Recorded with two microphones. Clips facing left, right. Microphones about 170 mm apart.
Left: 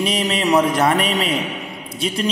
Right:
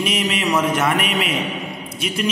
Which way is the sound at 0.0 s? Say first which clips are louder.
Left 2 dB; 30° left (ahead or behind).